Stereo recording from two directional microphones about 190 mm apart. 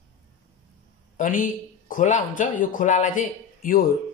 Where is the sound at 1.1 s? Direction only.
45° left (ahead or behind).